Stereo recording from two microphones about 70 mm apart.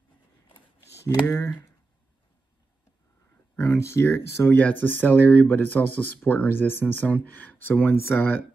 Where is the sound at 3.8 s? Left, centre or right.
Left.